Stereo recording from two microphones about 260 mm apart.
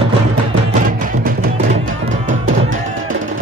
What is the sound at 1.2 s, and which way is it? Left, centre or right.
Music, right.